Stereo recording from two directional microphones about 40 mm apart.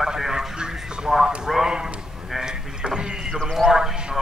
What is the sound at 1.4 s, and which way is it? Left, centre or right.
Speech, centre.